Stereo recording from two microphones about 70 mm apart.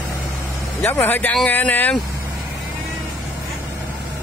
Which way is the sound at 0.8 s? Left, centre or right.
Left.